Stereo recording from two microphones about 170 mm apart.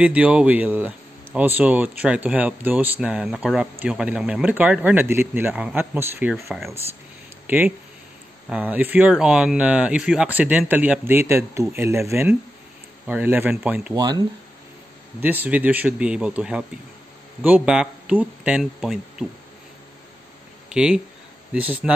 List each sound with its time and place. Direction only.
0.0 s speech: 5° right (ahead or behind)
7.4 s speech: 10° right (ahead or behind)
13.9 s speech: 25° right (ahead or behind)
15.1 s speech: 10° right (ahead or behind)
20.7 s speech: 5° right (ahead or behind)